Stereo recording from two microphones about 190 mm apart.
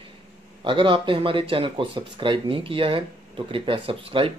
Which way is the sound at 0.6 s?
25° right (ahead or behind).